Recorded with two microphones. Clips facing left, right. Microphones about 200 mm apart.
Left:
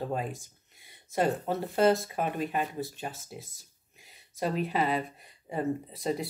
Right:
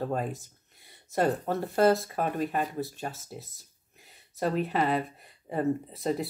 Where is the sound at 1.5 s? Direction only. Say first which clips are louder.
Right 1 dB; centre (ahead or behind).